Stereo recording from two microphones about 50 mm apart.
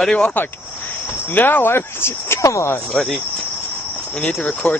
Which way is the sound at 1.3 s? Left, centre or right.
Left.